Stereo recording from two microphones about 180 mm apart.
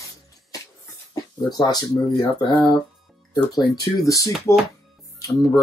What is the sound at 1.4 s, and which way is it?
Speech, 20° left (ahead or behind).